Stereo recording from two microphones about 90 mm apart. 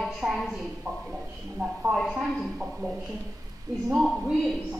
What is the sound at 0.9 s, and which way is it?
Speech, 45° right (ahead or behind).